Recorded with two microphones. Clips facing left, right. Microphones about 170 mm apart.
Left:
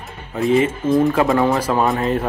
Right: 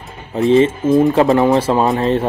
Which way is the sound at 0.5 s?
25° right (ahead or behind).